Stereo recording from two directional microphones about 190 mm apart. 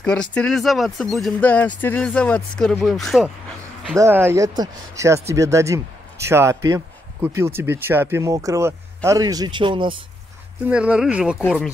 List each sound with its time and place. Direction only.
0.0 s speech: 5° left (ahead or behind)
3.9 s speech: 15° right (ahead or behind)
10.7 s speech: 5° right (ahead or behind)